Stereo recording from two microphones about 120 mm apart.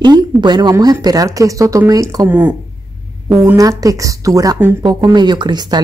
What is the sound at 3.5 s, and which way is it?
Speech, 30° right (ahead or behind).